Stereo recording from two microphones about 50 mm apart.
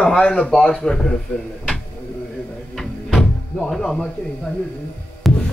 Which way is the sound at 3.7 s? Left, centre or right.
Centre.